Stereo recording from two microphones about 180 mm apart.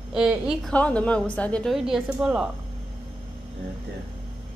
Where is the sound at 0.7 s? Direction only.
5° left (ahead or behind).